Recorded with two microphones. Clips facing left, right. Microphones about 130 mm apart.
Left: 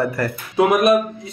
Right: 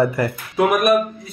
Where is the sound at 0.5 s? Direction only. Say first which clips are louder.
Left 2 dB; 20° left (ahead or behind).